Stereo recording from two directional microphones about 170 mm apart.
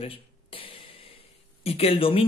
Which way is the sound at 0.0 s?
35° left (ahead or behind).